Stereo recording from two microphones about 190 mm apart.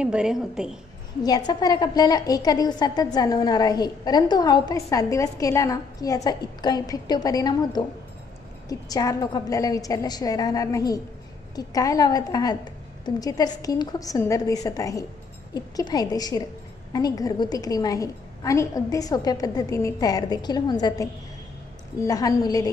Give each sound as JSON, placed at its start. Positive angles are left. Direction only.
{"t": 0.0, "sound": "a woman's voice", "side_deg": -5}
{"t": 1.5, "sound": "a woman's voice", "side_deg": 20}